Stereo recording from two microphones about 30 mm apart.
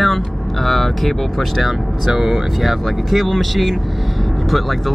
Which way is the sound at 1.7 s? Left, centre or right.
Centre.